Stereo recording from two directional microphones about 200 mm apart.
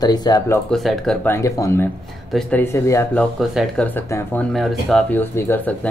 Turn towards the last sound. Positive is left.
turn(degrees=10)  # may be behind; listen again after turning